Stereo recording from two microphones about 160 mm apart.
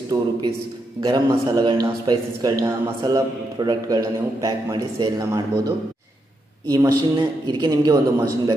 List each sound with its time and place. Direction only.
0.1 s a man's voice: 25° right (ahead or behind)
6.7 s a man's voice: 20° right (ahead or behind)